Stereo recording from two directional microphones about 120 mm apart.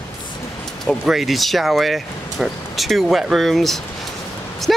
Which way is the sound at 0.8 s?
Centre (ahead or behind).